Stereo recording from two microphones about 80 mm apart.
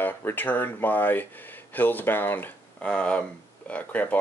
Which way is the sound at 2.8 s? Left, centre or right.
Centre.